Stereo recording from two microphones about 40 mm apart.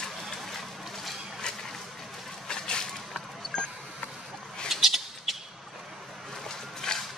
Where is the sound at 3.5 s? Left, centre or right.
Left.